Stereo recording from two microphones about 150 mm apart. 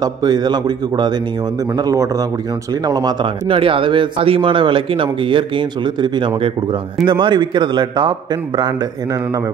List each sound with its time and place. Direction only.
0.0 s a man's voice: 30° right (ahead or behind)